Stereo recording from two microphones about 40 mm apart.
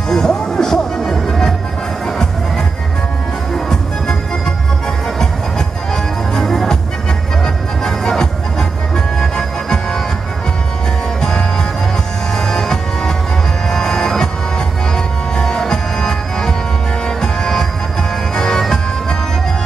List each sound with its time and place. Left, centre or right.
0.1 s music: centre
6.3 s music: centre
11.1 s music: centre
15.3 s music: centre